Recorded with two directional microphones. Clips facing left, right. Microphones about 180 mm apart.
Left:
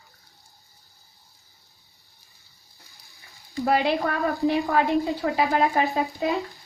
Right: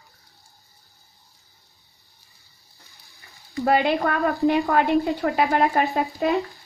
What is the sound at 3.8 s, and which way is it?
A woman's voice, 70° right (ahead or behind).